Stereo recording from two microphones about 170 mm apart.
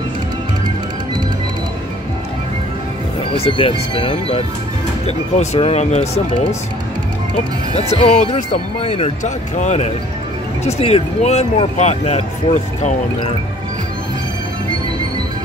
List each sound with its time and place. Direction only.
3.3 s speech: 35° left (ahead or behind)
7.7 s speech: 40° left (ahead or behind)